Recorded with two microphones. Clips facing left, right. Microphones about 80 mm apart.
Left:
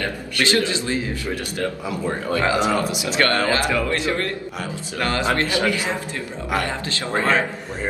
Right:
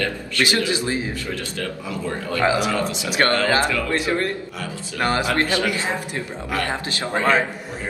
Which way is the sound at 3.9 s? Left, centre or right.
Right.